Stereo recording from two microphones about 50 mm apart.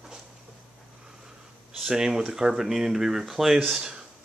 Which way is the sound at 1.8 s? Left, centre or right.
Centre.